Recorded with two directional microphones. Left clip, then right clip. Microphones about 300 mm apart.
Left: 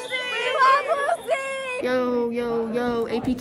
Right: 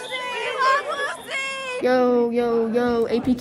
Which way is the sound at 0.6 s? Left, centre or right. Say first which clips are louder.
Left 2 dB; centre.